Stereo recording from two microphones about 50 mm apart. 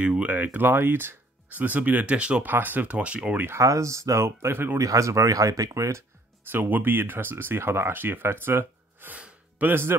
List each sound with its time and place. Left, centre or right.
0.0 s speech: right
2.4 s speech: right
3.0 s speech: right
3.5 s speech: right
4.7 s speech: right
6.5 s speech: right
9.1 s gasp: right
9.7 s speech: right